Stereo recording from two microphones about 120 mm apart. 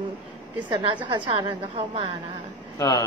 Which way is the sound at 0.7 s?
40° right (ahead or behind).